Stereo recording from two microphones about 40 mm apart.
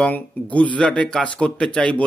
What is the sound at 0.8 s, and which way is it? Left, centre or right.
Speech, left.